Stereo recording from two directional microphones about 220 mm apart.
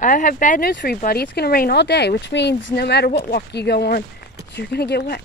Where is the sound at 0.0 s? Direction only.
35° left (ahead or behind).